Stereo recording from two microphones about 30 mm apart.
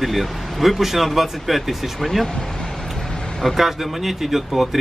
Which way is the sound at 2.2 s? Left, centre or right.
Left.